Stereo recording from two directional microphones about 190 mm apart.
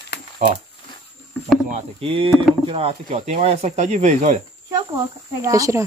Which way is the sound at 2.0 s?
30° right (ahead or behind).